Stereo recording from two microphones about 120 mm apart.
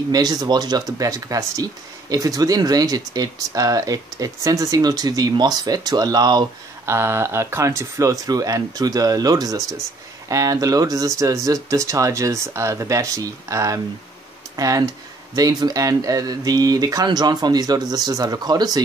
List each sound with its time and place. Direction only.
0.1 s speech: 35° right (ahead or behind)
6.9 s speech: 20° right (ahead or behind)